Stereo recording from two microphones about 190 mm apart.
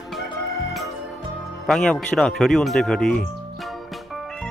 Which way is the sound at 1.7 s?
Centre (ahead or behind).